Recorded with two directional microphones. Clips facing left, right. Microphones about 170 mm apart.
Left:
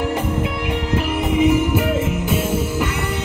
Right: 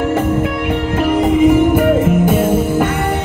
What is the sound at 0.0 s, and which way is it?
Music, 50° right (ahead or behind).